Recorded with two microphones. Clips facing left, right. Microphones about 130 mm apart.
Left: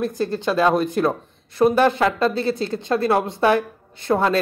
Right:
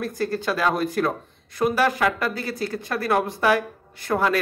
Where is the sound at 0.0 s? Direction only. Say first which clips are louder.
Left 3 dB; 20° left (ahead or behind).